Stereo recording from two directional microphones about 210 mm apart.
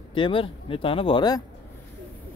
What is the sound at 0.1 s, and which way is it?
Speech, 25° left (ahead or behind).